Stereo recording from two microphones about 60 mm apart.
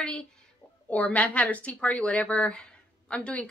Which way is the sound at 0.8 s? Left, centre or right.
Left.